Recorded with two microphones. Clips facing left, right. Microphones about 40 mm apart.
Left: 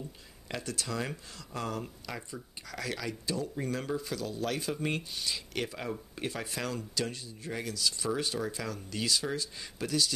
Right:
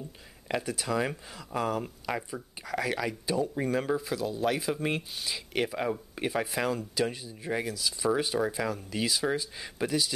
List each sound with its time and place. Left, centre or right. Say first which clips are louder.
0.5 s speech: right 6 dB; centre